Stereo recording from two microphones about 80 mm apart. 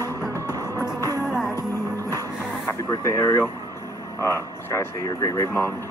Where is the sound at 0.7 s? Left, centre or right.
Left.